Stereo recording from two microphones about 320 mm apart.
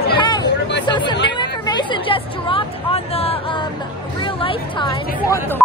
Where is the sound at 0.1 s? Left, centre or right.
Centre.